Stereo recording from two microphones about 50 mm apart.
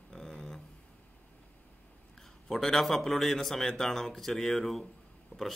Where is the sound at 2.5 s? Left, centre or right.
Centre.